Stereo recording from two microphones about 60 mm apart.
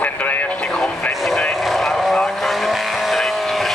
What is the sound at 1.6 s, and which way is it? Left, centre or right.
Vehicle, centre.